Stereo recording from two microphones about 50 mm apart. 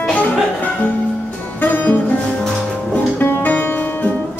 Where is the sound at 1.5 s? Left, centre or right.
Left.